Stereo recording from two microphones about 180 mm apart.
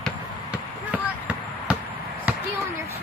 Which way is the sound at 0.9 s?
5° right (ahead or behind).